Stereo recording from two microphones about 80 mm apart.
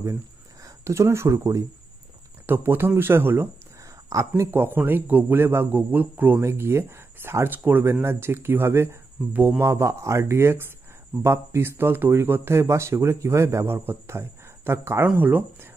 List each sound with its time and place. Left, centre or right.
0.8 s speech: right
2.4 s speech: right
4.1 s speech: right
4.5 s speech: right
6.4 s speech: right